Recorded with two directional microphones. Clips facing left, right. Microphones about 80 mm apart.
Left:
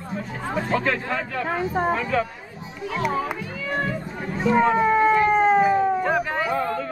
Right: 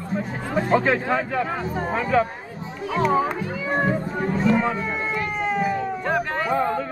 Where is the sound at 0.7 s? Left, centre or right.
Right.